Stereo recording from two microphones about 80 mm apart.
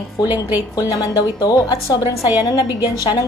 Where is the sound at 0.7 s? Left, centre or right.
Left.